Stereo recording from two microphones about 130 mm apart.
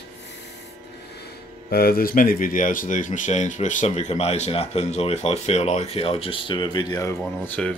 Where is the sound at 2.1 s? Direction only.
90° left; by 7.1 s 30° left (ahead or behind).